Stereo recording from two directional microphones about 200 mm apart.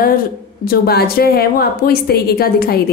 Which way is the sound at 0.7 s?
50° left (ahead or behind).